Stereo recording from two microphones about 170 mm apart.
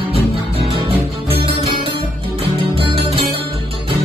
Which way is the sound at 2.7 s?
30° right (ahead or behind).